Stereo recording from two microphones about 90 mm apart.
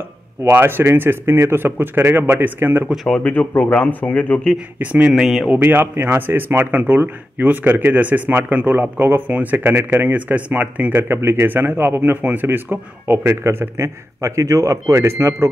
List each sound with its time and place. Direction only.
0.4 s speech: 25° right (ahead or behind)
2.9 s speech: centre (ahead or behind)
3.3 s speech: 20° left (ahead or behind)
4.7 s speech: 20° right (ahead or behind)
5.1 s speech: centre (ahead or behind)
5.5 s speech: 20° right (ahead or behind)